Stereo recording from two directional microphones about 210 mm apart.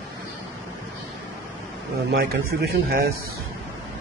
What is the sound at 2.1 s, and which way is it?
A man's voice, 45° right (ahead or behind).